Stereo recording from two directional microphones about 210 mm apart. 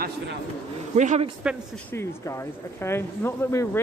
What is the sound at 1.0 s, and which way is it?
Speech, 35° right (ahead or behind).